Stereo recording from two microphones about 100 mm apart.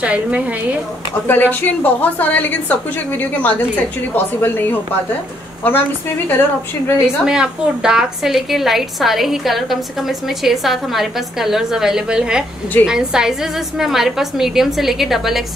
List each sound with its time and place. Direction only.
0.0 s a woman's voice: 10° right (ahead or behind)
1.2 s a woman's voice: 20° left (ahead or behind)
7.2 s a woman's voice: 5° right (ahead or behind)